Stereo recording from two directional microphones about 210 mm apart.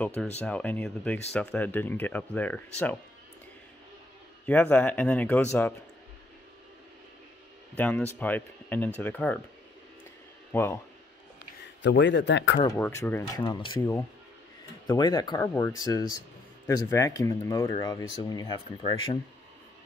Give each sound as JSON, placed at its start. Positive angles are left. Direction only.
{"t": 0.0, "sound": "speech", "side_deg": 5}
{"t": 4.5, "sound": "speech", "side_deg": 5}
{"t": 7.7, "sound": "speech", "side_deg": 10}
{"t": 10.5, "sound": "speech", "side_deg": 10}
{"t": 11.8, "sound": "a man's voice", "side_deg": 60}
{"t": 12.6, "sound": "speech", "side_deg": 10}